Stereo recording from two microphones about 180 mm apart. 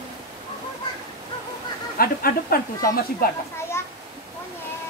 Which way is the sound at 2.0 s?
55° left (ahead or behind).